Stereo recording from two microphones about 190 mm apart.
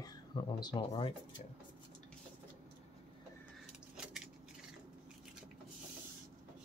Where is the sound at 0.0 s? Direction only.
20° left (ahead or behind).